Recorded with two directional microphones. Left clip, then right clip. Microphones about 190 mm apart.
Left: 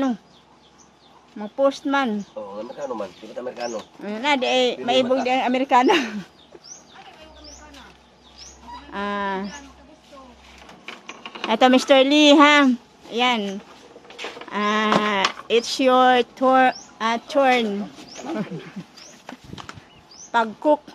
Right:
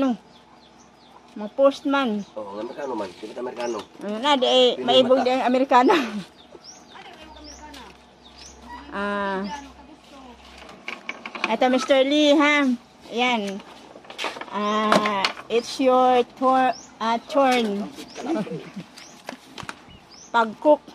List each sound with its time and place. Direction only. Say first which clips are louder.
1.4 s speech: right 2 dB; 20° left (ahead or behind)
3.6 s speech: right 1 dB; 15° left (ahead or behind)
8.9 s speech: even; 15° left (ahead or behind)
11.1 s a sound: right 3 dB; 30° right (ahead or behind)
11.5 s speech: left 4 dB; 40° left (ahead or behind)
14.5 s speech: left 1 dB; 45° left (ahead or behind); by 18.7 s 30° left (ahead or behind)
20.2 s speech: right 1 dB; 25° left (ahead or behind)